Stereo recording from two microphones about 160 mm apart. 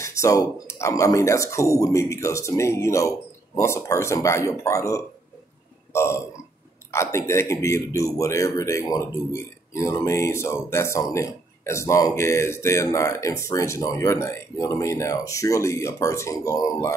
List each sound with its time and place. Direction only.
0.0 s speech: 20° left (ahead or behind)